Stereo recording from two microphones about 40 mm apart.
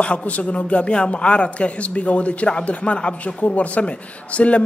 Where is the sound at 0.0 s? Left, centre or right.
Left.